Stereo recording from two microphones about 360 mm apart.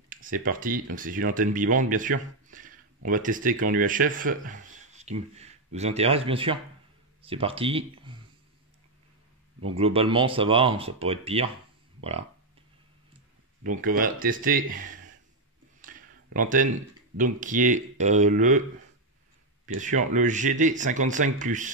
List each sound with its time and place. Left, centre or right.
0.1 s speech: right
9.8 s speech: centre
13.7 s speech: right
15.8 s a sound: right
17.2 s speech: right
19.8 s speech: right